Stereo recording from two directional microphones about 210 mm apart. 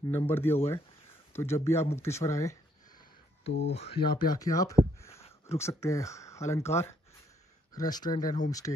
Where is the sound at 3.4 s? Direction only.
55° left (ahead or behind).